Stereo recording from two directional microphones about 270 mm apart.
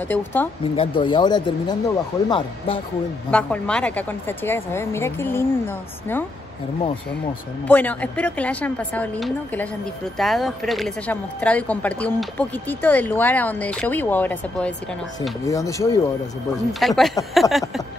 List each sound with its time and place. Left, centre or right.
0.1 s a woman's voice: centre
0.7 s a woman's voice: centre
3.3 s a woman's voice: centre
7.6 s a woman's voice: centre
16.8 s speech: centre